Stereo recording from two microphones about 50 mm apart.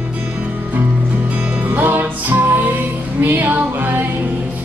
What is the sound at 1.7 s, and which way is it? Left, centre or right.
Music, right.